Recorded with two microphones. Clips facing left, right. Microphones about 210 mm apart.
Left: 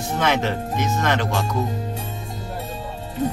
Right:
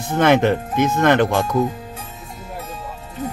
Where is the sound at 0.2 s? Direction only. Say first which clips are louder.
Right 8 dB; 55° right (ahead or behind).